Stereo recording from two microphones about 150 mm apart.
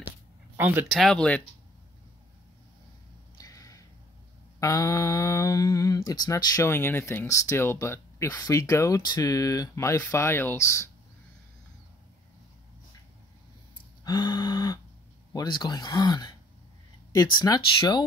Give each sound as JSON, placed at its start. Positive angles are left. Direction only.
{"t": 0.6, "sound": "speech", "side_deg": -10}
{"t": 0.9, "sound": "speech", "side_deg": 5}
{"t": 3.3, "sound": "a sound", "side_deg": 25}
{"t": 4.6, "sound": "speech", "side_deg": 25}
{"t": 14.0, "sound": "speech", "side_deg": 30}